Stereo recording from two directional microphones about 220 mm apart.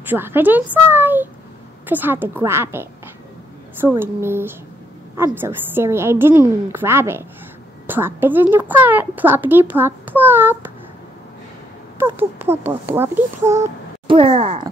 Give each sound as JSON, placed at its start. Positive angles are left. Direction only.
{"t": 0.1, "sound": "a woman's voice", "side_deg": -10}
{"t": 12.0, "sound": "a woman's voice", "side_deg": -10}
{"t": 13.5, "sound": "speech", "side_deg": -30}